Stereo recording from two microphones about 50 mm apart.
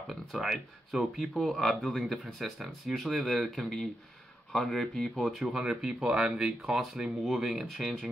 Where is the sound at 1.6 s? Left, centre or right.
Centre.